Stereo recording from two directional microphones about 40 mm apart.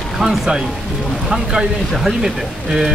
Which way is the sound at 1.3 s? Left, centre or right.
Centre.